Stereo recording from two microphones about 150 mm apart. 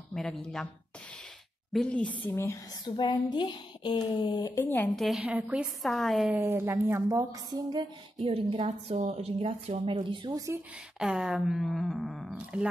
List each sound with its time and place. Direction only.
0.1 s speech: 5° left (ahead or behind)
1.7 s a woman's voice: 5° left (ahead or behind); by 4.6 s 25° left (ahead or behind)
4.9 s speech: centre (ahead or behind)
6.3 s speech: 15° right (ahead or behind)
8.2 s a woman's voice: 40° right (ahead or behind)
11.0 s speech: 5° right (ahead or behind)